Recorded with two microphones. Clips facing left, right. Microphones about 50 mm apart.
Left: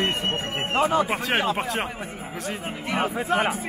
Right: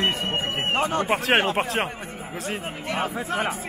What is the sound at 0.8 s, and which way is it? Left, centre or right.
Speech, centre.